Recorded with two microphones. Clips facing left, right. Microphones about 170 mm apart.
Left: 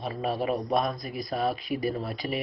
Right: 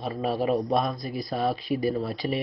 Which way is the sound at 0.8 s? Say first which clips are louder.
Right 1 dB; 35° right (ahead or behind).